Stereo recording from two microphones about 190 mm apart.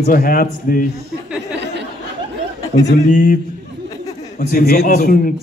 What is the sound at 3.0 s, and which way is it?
Speech, 45° left (ahead or behind).